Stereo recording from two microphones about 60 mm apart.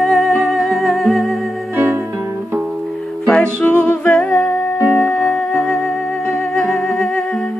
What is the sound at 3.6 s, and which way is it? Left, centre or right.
Music, centre.